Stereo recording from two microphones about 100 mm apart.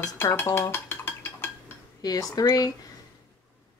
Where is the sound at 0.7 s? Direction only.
20° left (ahead or behind).